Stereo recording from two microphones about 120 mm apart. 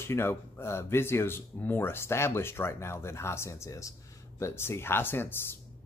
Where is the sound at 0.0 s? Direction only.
20° left (ahead or behind).